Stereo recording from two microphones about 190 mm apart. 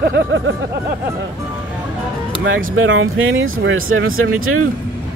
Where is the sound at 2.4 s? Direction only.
90° right.